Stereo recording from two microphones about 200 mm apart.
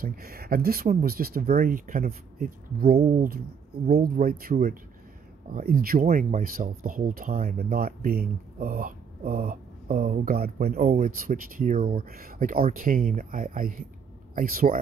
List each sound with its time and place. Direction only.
0.0 s speech: 45° right (ahead or behind)